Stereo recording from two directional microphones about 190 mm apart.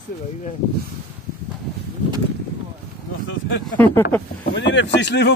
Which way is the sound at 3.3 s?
70° left (ahead or behind).